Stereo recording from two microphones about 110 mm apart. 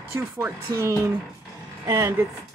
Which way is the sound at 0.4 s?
25° right (ahead or behind).